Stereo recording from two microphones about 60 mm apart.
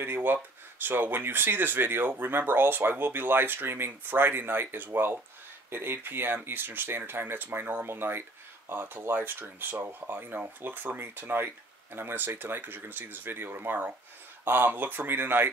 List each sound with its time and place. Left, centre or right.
0.0 s speech: right